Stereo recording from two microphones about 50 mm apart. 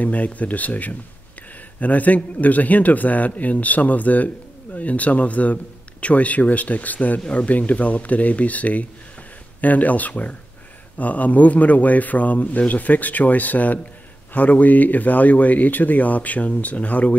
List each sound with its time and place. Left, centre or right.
0.0 s speech: left